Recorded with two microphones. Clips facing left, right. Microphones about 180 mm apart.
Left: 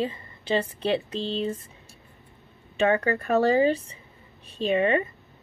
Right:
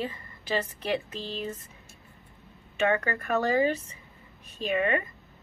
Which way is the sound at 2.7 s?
30° left (ahead or behind).